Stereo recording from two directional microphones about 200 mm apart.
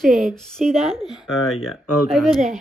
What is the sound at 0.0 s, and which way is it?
Speech, centre (ahead or behind).